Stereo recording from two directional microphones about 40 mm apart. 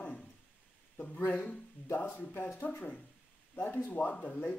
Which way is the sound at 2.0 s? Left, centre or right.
Left.